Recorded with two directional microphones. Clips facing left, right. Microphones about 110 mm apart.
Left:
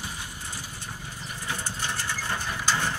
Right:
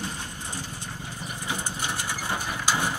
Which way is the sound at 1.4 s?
15° right (ahead or behind).